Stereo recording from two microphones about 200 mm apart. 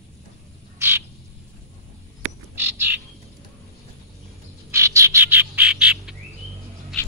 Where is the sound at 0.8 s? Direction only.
10° right (ahead or behind).